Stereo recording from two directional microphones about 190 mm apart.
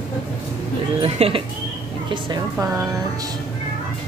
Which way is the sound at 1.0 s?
30° right (ahead or behind).